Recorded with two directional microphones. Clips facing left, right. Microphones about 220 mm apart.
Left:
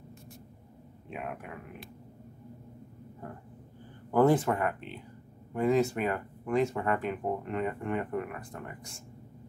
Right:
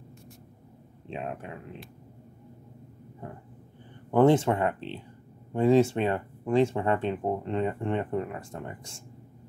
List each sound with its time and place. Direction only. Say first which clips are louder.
1.0 s speech: right 4 dB; 25° right (ahead or behind)
4.1 s speech: right 3 dB; 25° right (ahead or behind)